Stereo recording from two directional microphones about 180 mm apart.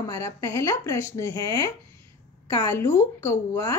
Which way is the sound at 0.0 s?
15° left (ahead or behind).